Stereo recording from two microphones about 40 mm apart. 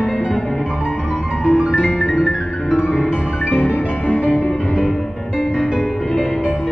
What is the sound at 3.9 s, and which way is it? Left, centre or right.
Music, left.